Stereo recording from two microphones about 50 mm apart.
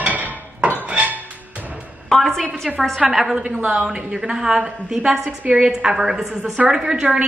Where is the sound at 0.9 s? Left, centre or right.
Right.